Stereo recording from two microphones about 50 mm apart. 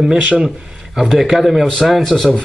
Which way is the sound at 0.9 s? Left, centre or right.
Centre.